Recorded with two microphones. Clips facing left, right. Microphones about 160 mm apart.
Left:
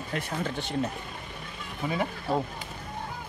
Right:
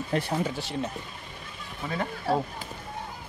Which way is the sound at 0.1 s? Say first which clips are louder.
Right 5 dB; 30° right (ahead or behind).